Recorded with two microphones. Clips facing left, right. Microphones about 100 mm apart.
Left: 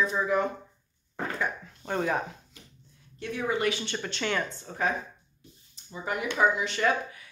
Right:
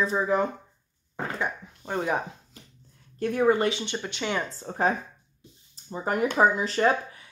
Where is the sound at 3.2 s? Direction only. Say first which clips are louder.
Right 8 dB; 45° right (ahead or behind).